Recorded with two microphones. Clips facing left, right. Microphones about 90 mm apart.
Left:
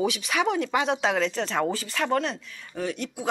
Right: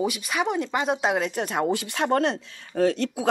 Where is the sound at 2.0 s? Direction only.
35° right (ahead or behind).